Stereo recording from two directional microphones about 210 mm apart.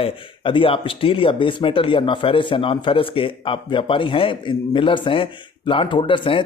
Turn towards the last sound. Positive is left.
turn(degrees=25)  # may be behind; listen again after turning